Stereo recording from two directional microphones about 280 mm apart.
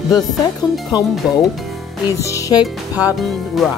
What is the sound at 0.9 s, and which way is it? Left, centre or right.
Music, centre.